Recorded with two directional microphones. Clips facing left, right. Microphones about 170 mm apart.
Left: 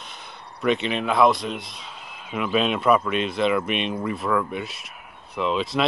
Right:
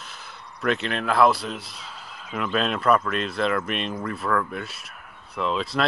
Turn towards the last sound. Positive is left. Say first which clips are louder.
# left 2 dB
turn(degrees=0)  # may be behind; listen again after turning